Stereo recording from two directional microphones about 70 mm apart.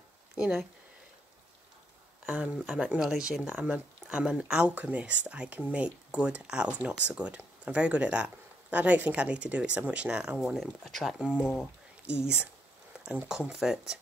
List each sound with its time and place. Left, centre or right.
0.4 s speech: centre
2.3 s speech: centre
11.1 s speech: centre
12.9 s a sound: centre
13.3 s speech: centre